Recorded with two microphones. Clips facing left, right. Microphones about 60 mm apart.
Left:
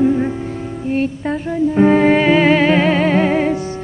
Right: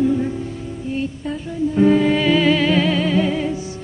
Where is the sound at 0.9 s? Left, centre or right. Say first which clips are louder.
Left 6 dB; left.